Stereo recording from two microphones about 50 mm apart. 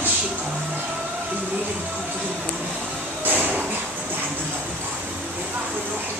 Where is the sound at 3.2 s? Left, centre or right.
Right.